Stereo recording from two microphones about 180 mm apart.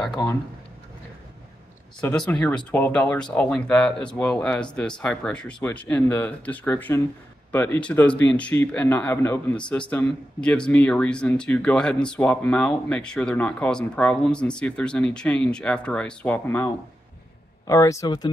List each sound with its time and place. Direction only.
2.0 s speech: 5° left (ahead or behind); by 18.3 s 20° left (ahead or behind)